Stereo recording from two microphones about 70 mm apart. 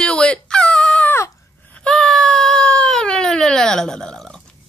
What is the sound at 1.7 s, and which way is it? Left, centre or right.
Baby cry, centre.